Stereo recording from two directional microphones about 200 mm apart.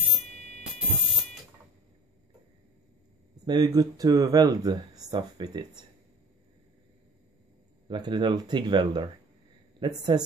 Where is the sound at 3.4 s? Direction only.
20° right (ahead or behind).